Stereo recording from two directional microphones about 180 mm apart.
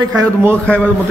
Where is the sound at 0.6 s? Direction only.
5° left (ahead or behind).